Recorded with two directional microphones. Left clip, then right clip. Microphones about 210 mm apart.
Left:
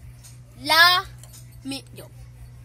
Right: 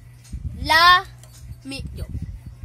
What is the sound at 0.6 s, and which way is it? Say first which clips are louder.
Speech: right 2 dB; 25° right (ahead or behind).